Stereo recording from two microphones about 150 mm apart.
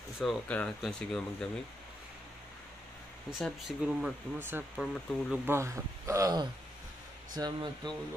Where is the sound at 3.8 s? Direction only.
5° right (ahead or behind); by 7.9 s 30° right (ahead or behind).